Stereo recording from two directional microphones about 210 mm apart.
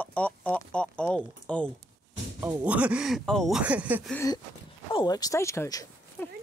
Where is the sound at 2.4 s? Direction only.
5° right (ahead or behind).